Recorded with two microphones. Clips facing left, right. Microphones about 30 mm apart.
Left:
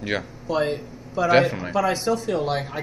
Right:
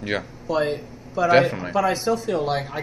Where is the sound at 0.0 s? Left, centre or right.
Centre.